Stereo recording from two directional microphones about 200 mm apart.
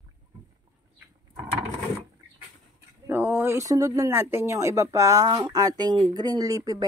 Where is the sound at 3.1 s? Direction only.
10° right (ahead or behind).